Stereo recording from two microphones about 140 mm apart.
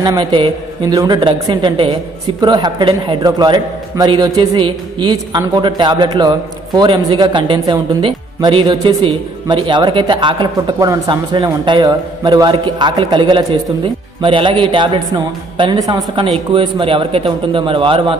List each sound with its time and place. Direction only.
0.0 s a man's voice: 30° right (ahead or behind)